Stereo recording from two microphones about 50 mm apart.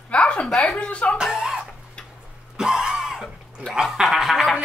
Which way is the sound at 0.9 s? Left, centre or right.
Left.